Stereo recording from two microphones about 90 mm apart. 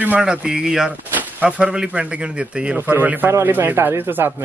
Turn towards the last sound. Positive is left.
turn(degrees=-25)  # may be behind; listen again after turning